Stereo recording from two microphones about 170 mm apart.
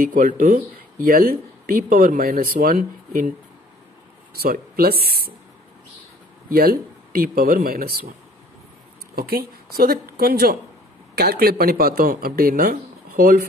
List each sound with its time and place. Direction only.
0.0 s speech: 55° right (ahead or behind)
6.5 s speech: 60° right (ahead or behind)
9.1 s a woman's voice: 65° right (ahead or behind)